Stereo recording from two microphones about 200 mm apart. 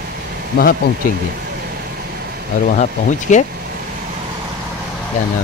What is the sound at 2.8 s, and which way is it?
Speech, 40° left (ahead or behind).